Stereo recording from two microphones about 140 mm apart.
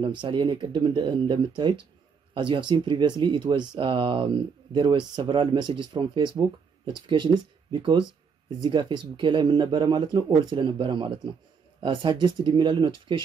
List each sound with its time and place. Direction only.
0.2 s speech: 35° right (ahead or behind)